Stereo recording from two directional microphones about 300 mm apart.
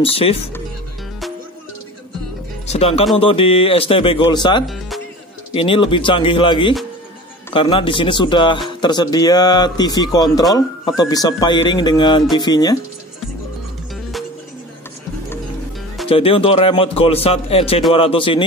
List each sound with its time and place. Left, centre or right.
0.0 s speech: centre
2.7 s speech: centre
4.6 s music: centre
5.6 s speech: centre
16.1 s speech: centre